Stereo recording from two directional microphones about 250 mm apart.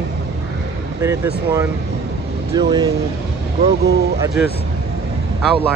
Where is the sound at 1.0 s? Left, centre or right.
Centre.